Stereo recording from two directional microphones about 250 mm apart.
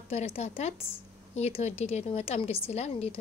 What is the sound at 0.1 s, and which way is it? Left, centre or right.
A woman's voice, left.